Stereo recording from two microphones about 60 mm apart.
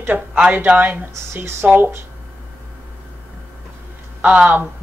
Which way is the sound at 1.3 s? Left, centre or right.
Right.